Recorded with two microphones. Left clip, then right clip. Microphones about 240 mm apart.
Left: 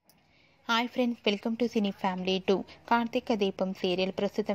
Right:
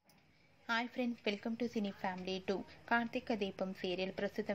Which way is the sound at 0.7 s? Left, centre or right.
Left.